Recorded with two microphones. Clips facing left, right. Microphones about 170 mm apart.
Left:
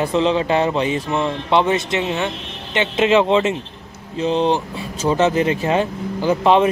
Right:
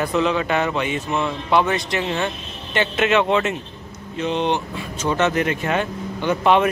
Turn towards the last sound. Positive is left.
turn(degrees=30)  # may be behind; listen again after turning